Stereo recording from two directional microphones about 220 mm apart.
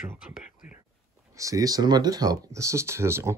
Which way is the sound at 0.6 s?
5° right (ahead or behind).